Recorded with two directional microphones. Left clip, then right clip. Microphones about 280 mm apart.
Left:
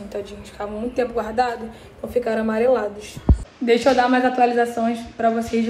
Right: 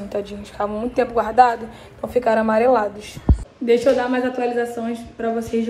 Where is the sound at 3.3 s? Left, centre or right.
Centre.